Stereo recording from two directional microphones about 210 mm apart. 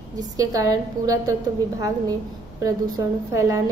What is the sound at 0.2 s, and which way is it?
A woman's voice, 15° right (ahead or behind).